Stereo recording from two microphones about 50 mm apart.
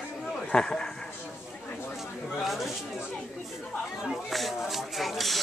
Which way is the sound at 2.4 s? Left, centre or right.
Centre.